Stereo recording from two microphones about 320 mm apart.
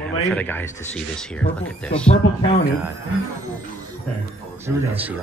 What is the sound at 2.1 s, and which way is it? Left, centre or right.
Speech, centre.